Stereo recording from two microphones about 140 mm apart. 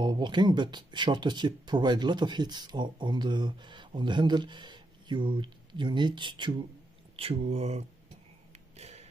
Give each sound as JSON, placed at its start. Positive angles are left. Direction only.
{"t": 0.0, "sound": "speech", "side_deg": -35}
{"t": 7.2, "sound": "speech", "side_deg": -45}
{"t": 8.7, "sound": "a sound", "side_deg": -50}